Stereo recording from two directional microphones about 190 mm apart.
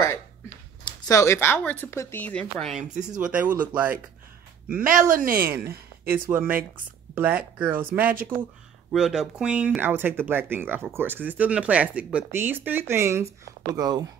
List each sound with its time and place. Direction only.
1.0 s speech: 15° left (ahead or behind)
3.2 s speech: 5° right (ahead or behind)
4.6 s speech: 45° right (ahead or behind)
6.1 s speech: 10° right (ahead or behind)